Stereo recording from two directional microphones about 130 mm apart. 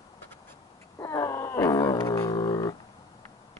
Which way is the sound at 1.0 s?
25° left (ahead or behind).